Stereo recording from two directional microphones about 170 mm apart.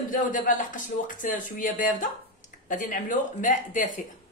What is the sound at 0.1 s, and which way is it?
Speech, 50° left (ahead or behind).